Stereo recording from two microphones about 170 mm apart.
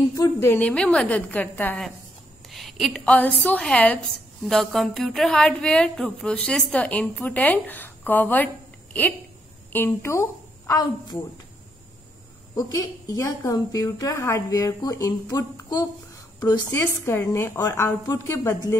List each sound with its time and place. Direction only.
0.1 s a woman's voice: 20° left (ahead or behind)
9.7 s a woman's voice: 10° left (ahead or behind)
12.5 s a woman's voice: 20° left (ahead or behind)